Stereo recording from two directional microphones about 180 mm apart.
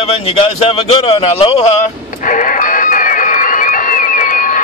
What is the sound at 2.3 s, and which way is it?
Music, 45° left (ahead or behind).